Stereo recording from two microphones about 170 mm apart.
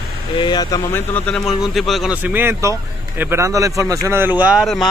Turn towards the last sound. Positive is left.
turn(degrees=-5)  # may be behind; listen again after turning